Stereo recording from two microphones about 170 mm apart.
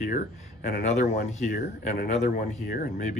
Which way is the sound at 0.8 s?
40° left (ahead or behind).